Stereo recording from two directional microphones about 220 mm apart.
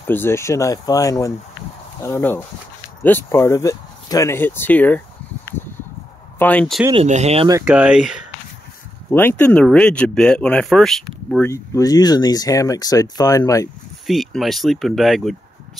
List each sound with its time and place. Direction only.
0.0 s speech: 10° left (ahead or behind)
6.9 s speech: 30° right (ahead or behind)
7.6 s speech: 5° right (ahead or behind)
9.1 s speech: 10° left (ahead or behind)
14.0 s speech: centre (ahead or behind)